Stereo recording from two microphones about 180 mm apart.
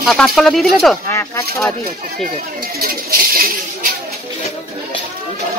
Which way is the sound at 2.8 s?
55° right (ahead or behind).